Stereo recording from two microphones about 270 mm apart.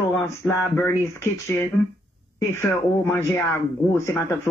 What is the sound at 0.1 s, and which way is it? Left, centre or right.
Speech, centre.